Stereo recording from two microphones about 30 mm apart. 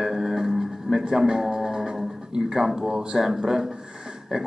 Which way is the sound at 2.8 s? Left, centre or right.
Right.